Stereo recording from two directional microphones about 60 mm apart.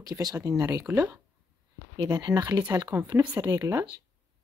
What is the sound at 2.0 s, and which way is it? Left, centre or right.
Speech, right.